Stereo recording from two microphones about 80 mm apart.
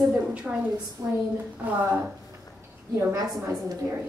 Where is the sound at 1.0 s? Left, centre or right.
Right.